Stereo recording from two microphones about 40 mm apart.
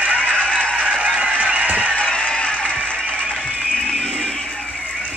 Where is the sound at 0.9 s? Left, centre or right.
Centre.